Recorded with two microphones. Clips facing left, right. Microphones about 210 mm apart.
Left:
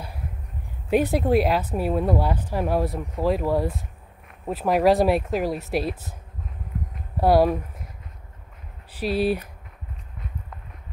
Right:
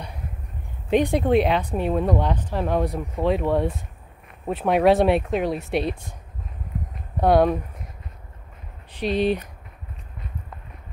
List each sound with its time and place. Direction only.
0.8 s speech: 5° left (ahead or behind)
7.2 s speech: 5° left (ahead or behind)
8.9 s speech: 5° left (ahead or behind)